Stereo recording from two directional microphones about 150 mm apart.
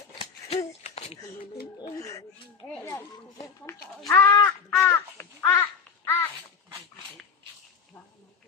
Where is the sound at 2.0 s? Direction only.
20° left (ahead or behind).